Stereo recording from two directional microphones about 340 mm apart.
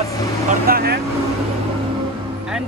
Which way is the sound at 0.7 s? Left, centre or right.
Right.